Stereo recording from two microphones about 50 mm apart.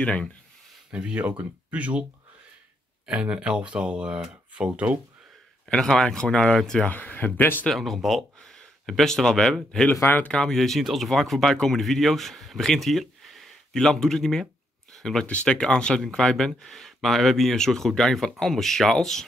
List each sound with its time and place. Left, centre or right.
0.0 s speech: left
0.9 s speech: right
3.1 s speech: centre
5.7 s speech: centre
6.9 s speech: left
7.7 s speech: centre
10.5 s speech: centre
10.8 s speech: centre
14.4 s a sound: centre
15.6 s speech: centre